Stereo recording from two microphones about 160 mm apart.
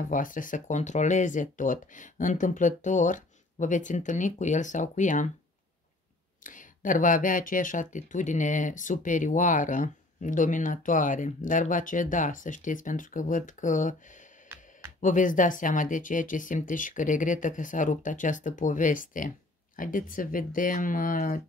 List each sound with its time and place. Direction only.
0.0 s speech: 55° left (ahead or behind)
6.4 s speech: 55° left (ahead or behind)
15.0 s speech: 55° left (ahead or behind)